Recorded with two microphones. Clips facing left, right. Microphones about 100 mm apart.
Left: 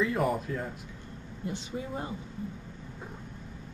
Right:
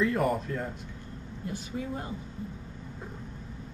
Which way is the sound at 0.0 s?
Centre (ahead or behind).